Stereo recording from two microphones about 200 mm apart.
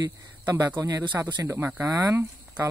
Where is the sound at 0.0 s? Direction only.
15° right (ahead or behind).